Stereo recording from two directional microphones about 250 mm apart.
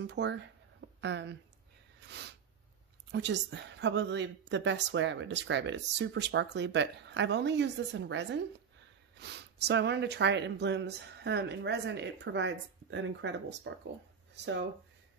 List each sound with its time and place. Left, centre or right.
0.0 s speech: right
3.1 s a woman's voice: right